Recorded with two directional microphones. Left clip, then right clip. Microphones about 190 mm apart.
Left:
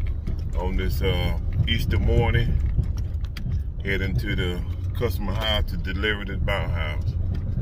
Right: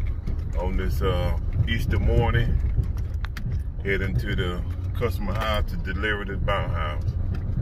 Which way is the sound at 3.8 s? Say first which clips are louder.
Right 1 dB; 15° left (ahead or behind).